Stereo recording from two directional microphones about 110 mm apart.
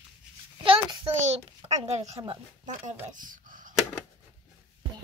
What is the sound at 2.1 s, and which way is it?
Speech, 55° right (ahead or behind).